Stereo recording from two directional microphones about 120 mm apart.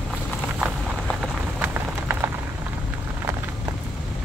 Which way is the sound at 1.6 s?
20° right (ahead or behind).